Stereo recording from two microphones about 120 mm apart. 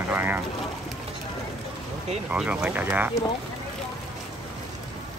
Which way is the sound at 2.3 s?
10° right (ahead or behind).